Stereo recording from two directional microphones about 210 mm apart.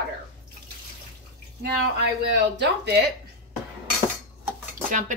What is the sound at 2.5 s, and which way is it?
Speech, 55° right (ahead or behind).